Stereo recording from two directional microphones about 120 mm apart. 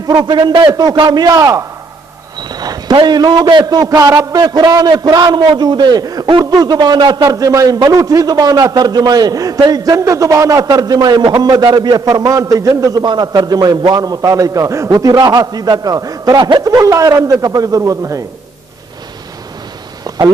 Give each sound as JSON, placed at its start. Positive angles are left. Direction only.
{"t": 0.0, "sound": "a man's voice", "side_deg": -35}